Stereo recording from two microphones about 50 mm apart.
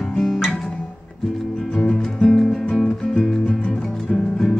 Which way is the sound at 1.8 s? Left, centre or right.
Centre.